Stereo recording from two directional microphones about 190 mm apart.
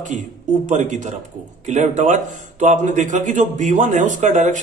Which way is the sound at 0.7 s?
40° right (ahead or behind).